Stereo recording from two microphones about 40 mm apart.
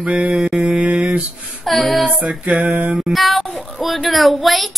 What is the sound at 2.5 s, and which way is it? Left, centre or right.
Mantra, centre.